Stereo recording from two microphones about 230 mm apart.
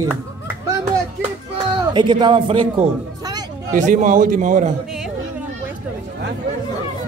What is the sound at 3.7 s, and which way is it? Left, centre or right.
Speech, right.